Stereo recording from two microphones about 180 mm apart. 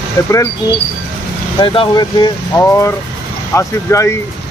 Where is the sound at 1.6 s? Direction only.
25° left (ahead or behind).